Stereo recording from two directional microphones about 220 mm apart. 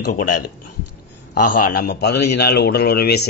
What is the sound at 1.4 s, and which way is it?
Speech, 90° left.